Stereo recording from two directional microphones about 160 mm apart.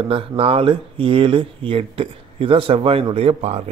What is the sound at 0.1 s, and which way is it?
Speech, 35° right (ahead or behind).